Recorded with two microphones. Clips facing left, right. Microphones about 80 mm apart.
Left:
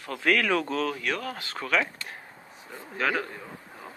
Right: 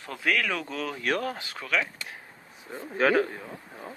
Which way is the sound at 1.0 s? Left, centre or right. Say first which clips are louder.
Right 3 dB; right.